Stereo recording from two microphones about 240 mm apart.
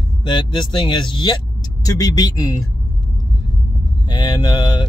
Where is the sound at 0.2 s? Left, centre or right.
Centre.